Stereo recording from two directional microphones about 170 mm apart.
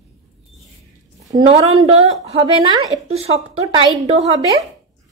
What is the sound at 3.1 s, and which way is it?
A woman's voice, 35° right (ahead or behind).